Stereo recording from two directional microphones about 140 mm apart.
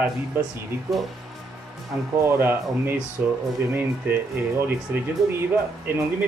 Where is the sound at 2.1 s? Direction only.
15° right (ahead or behind).